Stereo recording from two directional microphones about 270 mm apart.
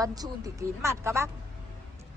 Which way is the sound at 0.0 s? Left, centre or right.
Centre.